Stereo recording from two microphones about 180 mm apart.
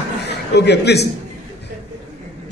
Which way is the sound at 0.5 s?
70° left (ahead or behind).